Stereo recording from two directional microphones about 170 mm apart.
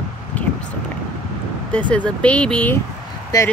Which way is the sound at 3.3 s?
20° left (ahead or behind).